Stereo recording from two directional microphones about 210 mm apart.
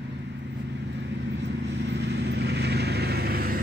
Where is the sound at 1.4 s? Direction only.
55° right (ahead or behind).